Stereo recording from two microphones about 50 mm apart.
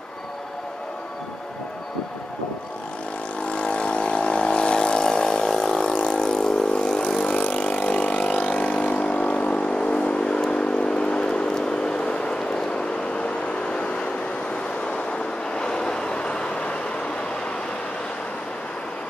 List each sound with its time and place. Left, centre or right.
3.4 s vehicle: left
15.5 s vehicle: centre